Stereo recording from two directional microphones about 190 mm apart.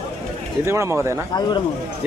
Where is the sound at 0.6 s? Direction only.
15° right (ahead or behind).